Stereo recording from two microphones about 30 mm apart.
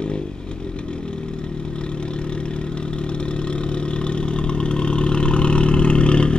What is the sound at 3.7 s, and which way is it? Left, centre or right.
Vehicle, left.